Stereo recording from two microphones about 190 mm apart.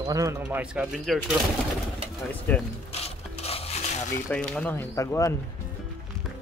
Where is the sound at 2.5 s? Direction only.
10° left (ahead or behind).